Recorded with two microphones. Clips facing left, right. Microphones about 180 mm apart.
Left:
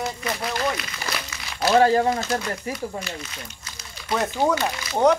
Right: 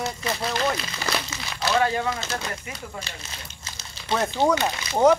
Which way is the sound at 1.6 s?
35° left (ahead or behind).